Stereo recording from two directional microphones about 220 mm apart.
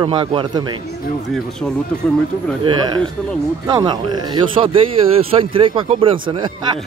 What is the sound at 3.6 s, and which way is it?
Speech, 20° right (ahead or behind).